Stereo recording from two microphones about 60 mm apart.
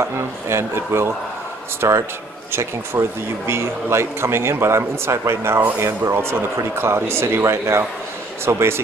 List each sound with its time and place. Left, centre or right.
0.0 s speech: right